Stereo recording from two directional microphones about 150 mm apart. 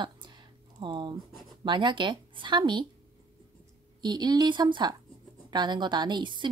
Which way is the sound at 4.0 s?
30° right (ahead or behind).